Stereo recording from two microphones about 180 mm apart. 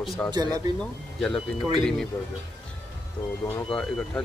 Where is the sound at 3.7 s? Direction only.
Centre (ahead or behind).